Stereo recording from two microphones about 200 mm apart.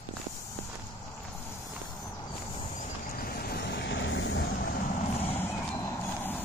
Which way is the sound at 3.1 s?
45° left (ahead or behind).